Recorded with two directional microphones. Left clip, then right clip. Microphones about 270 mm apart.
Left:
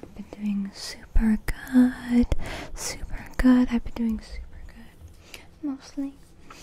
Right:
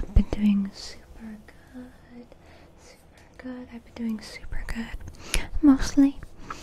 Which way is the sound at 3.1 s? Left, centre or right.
Left.